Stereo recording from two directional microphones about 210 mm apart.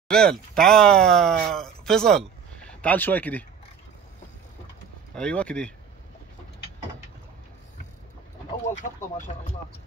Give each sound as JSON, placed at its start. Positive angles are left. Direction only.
{"t": 0.1, "sound": "speech", "side_deg": 5}
{"t": 5.1, "sound": "speech", "side_deg": 5}
{"t": 9.3, "sound": "speech", "side_deg": 30}